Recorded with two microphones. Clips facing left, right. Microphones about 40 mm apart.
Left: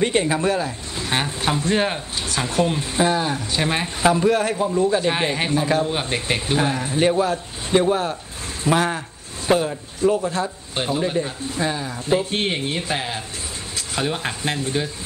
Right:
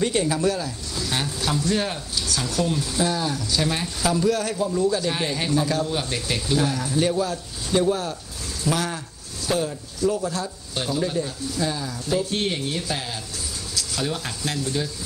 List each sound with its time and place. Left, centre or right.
0.0 s speech: left